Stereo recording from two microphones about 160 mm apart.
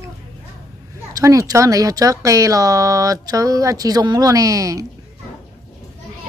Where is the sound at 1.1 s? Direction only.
20° right (ahead or behind).